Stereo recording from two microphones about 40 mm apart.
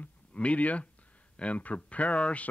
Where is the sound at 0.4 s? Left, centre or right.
Left.